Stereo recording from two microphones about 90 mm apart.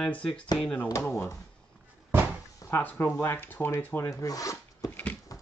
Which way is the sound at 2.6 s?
40° left (ahead or behind).